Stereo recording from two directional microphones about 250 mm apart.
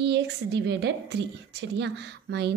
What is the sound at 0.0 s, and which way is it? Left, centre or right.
A woman's voice, right.